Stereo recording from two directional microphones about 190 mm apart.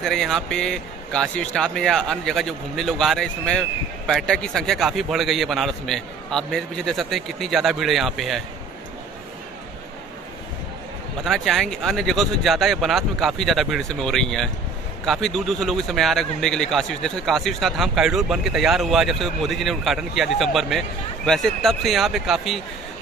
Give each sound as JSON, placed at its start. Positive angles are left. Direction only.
{"t": 0.0, "sound": "speech", "side_deg": 0}
{"t": 11.2, "sound": "speech", "side_deg": 0}